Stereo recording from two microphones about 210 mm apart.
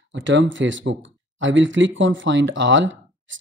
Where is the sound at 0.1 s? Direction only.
60° right (ahead or behind).